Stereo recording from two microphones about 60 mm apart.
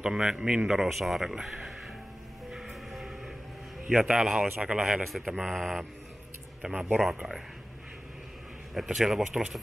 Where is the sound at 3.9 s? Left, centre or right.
Centre.